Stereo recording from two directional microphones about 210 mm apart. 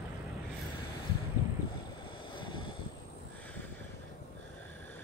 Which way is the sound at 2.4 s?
25° left (ahead or behind).